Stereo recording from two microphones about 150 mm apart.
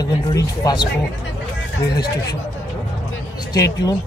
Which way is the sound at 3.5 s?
25° left (ahead or behind).